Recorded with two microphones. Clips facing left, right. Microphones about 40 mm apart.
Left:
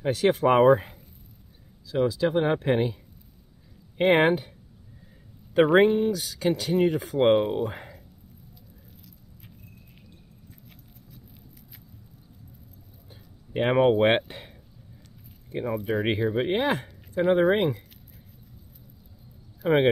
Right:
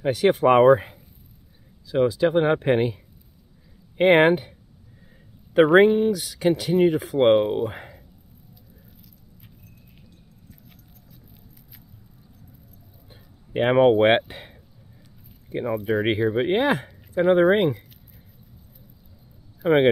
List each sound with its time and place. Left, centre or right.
0.0 s speech: centre
1.9 s speech: right
4.0 s speech: centre
13.1 s a sound: centre
15.5 s speech: centre
19.6 s speech: centre